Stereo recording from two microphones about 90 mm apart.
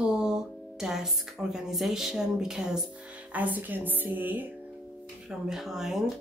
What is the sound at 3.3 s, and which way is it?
A woman's voice, 20° right (ahead or behind).